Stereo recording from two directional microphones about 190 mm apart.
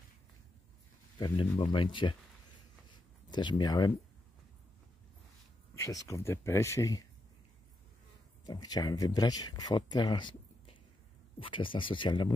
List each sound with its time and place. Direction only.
1.1 s speech: 25° left (ahead or behind)
3.3 s speech: 25° left (ahead or behind)
6.0 s speech: 15° left (ahead or behind)
8.5 s speech: 20° left (ahead or behind)